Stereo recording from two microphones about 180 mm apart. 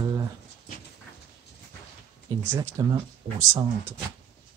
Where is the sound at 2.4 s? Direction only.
15° right (ahead or behind); by 3.6 s 30° right (ahead or behind).